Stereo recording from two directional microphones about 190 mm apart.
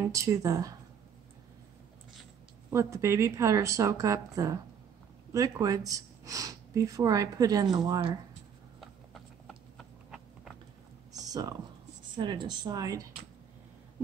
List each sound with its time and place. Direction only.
0.0 s speech: 15° right (ahead or behind)
2.7 s speech: 15° right (ahead or behind)
9.1 s a sound: centre (ahead or behind)
11.1 s computer keyboard: 20° right (ahead or behind)
12.2 s speech: 25° right (ahead or behind)